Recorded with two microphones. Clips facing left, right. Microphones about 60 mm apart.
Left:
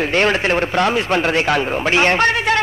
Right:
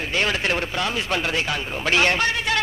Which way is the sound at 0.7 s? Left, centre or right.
Left.